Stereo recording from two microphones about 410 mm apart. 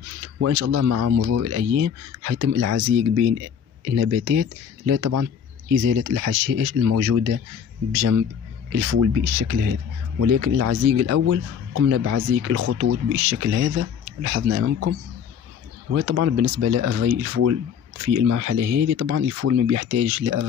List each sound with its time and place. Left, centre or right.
0.4 s speech: right
8.9 s speech: right